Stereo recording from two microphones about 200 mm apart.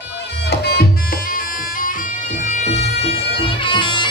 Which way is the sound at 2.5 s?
30° left (ahead or behind).